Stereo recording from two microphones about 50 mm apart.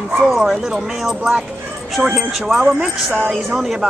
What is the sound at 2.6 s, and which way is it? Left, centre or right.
Speech, centre.